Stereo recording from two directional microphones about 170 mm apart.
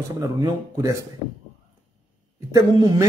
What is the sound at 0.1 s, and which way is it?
Speech, 20° right (ahead or behind).